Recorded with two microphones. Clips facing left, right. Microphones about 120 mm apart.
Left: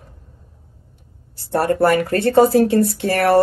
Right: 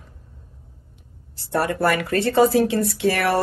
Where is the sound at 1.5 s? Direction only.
50° left (ahead or behind).